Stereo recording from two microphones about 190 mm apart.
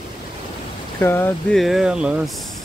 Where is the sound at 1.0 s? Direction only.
10° left (ahead or behind).